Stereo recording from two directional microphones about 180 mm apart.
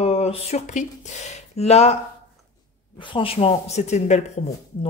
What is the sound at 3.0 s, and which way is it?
Speech, 25° left (ahead or behind).